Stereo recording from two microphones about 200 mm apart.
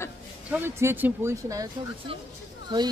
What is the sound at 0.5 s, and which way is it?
A woman's voice, 10° right (ahead or behind).